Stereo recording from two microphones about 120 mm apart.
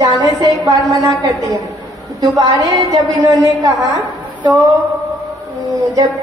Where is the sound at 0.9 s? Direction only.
25° right (ahead or behind).